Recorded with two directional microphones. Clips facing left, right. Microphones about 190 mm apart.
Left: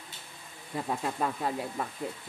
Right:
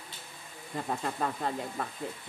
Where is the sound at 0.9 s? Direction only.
5° left (ahead or behind).